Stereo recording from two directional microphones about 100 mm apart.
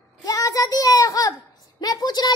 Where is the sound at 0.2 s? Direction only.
35° left (ahead or behind).